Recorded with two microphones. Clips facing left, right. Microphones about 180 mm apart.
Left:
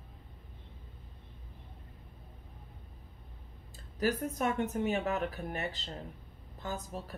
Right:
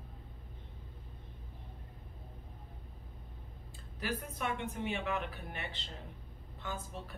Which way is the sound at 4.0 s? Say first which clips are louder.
Left 7 dB; 45° left (ahead or behind).